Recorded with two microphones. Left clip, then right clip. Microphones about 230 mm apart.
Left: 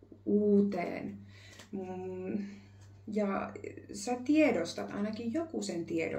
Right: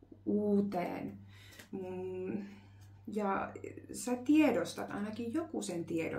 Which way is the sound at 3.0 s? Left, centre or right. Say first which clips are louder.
Left 1 dB; centre.